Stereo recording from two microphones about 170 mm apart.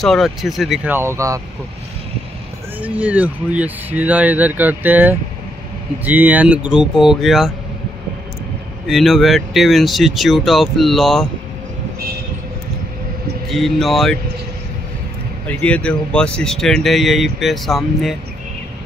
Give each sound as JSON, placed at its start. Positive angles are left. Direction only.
{"t": 0.0, "sound": "speech", "side_deg": 0}
{"t": 0.8, "sound": "speech", "side_deg": -15}
{"t": 2.8, "sound": "speech", "side_deg": -10}
{"t": 8.8, "sound": "speech", "side_deg": 0}
{"t": 13.5, "sound": "speech", "side_deg": 0}
{"t": 15.4, "sound": "speech", "side_deg": 10}